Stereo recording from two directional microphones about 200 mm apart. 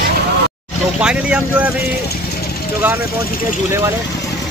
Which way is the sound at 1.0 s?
5° right (ahead or behind).